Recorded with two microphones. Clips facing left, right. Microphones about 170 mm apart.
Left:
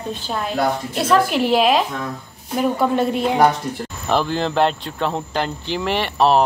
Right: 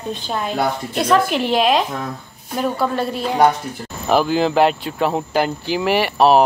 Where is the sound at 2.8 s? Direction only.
20° left (ahead or behind).